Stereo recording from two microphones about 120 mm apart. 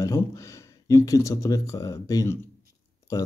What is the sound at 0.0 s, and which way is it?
Speech, 25° left (ahead or behind).